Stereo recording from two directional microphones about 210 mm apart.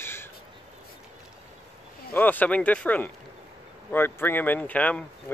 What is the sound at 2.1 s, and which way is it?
A man's voice, 10° left (ahead or behind).